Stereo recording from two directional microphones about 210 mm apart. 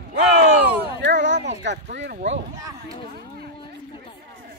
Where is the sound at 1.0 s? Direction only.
55° right (ahead or behind).